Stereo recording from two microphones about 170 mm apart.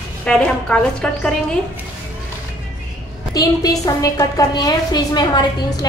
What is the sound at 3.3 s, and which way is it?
A woman's voice, 20° left (ahead or behind).